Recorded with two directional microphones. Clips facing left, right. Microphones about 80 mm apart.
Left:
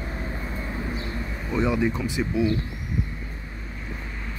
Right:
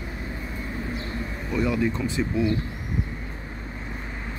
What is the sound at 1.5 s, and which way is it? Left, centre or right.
Speech, left.